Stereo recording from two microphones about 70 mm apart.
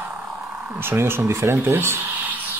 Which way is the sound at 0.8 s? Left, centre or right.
Right.